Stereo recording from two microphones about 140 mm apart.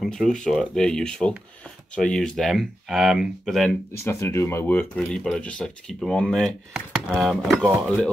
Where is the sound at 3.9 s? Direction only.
20° left (ahead or behind); by 7.7 s centre (ahead or behind).